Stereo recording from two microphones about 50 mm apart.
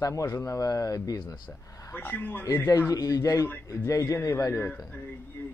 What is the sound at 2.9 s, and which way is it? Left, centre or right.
Speech, left.